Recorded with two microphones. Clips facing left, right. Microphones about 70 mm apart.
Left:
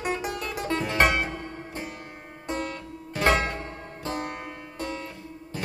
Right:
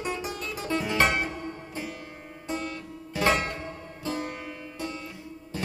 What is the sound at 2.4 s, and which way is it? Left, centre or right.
Music, left.